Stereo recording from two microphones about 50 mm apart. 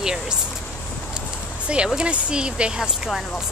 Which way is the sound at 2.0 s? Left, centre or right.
Centre.